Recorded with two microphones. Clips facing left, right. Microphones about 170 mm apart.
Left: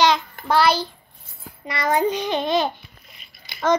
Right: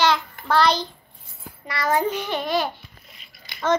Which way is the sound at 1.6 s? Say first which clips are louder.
Left 2 dB; 20° left (ahead or behind).